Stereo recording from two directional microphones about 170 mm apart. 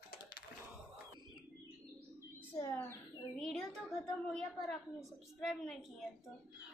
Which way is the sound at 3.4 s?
Centre (ahead or behind).